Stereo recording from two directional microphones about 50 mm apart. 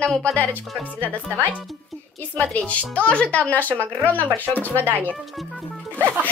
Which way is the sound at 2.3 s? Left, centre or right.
Left.